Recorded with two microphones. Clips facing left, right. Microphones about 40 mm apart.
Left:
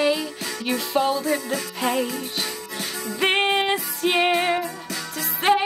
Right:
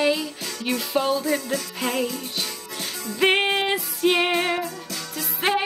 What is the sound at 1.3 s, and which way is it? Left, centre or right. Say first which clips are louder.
Music: even; centre.